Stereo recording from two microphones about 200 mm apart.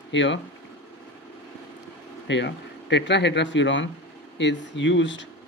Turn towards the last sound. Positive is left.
turn(degrees=65)  # may be behind; listen again after turning